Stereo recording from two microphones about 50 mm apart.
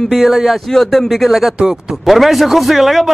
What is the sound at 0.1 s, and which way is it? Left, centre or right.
A man's voice, centre.